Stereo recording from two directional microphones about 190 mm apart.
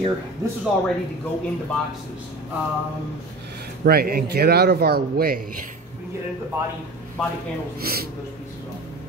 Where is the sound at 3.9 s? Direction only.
55° right (ahead or behind).